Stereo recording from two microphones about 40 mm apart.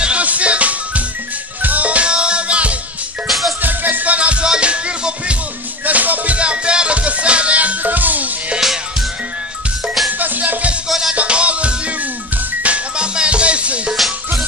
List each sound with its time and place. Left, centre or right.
0.2 s music: right
3.3 s music: centre
3.6 s music: right
5.9 s music: right
6.3 s music: right
10.0 s music: right
11.1 s music: right